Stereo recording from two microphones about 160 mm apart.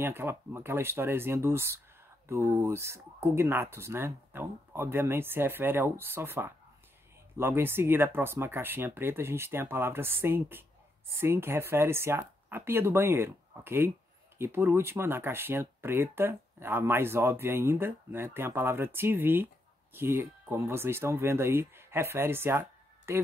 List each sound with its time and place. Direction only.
0.0 s speech: 15° right (ahead or behind)